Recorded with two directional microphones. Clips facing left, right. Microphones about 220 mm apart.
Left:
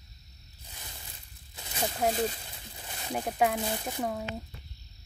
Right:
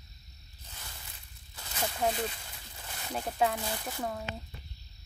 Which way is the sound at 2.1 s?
35° left (ahead or behind).